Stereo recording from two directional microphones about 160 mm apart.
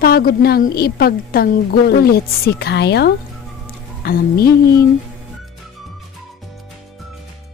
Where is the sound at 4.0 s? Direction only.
70° left (ahead or behind).